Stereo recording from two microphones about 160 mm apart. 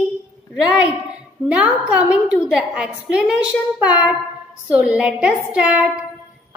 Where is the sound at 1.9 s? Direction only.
10° right (ahead or behind).